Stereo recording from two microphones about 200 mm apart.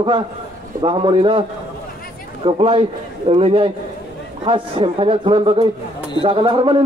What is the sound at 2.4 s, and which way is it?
A man's voice, 30° right (ahead or behind).